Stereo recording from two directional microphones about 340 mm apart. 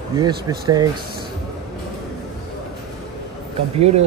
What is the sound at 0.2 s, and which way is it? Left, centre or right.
Speech, centre.